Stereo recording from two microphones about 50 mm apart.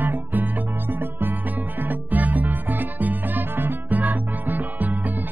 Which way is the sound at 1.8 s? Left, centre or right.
Right.